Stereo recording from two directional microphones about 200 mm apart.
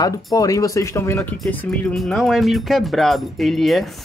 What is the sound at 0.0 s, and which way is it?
Speech, 15° left (ahead or behind).